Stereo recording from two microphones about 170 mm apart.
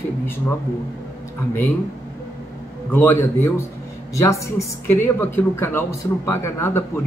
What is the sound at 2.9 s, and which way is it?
Speech, 15° left (ahead or behind).